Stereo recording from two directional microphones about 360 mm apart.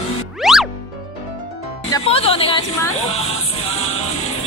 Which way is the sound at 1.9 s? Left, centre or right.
Centre.